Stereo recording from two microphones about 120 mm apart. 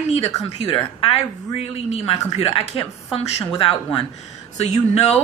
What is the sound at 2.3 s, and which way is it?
Speech, 55° left (ahead or behind).